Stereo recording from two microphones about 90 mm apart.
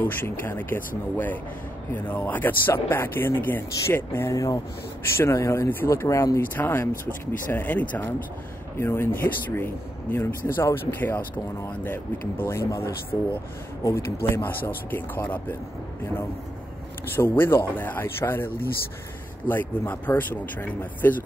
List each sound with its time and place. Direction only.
0.0 s speech: 25° left (ahead or behind)
4.3 s speech: 40° left (ahead or behind); by 15.5 s 20° left (ahead or behind)
17.1 s speech: 25° left (ahead or behind)